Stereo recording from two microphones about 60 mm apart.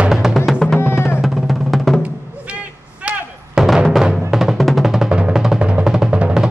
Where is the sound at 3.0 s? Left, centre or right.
Centre.